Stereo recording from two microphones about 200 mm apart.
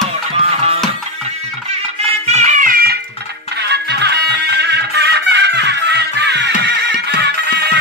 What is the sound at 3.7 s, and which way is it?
Music, 55° right (ahead or behind).